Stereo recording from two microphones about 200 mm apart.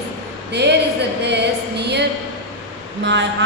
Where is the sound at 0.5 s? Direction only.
60° right (ahead or behind).